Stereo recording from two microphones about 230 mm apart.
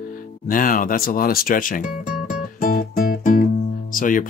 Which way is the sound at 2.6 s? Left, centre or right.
Left.